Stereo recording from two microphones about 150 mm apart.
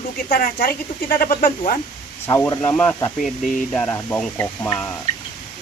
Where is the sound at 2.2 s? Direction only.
20° left (ahead or behind).